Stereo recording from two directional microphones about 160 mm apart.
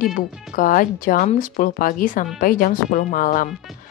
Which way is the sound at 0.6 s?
60° left (ahead or behind).